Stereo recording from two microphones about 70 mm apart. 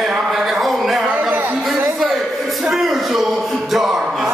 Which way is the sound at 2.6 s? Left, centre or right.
Centre.